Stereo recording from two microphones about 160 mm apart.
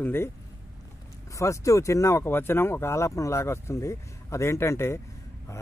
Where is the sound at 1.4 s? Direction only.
20° left (ahead or behind).